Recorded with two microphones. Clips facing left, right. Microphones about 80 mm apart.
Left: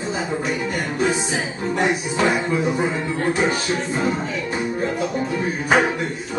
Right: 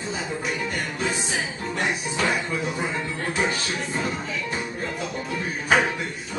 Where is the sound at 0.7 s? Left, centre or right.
Centre.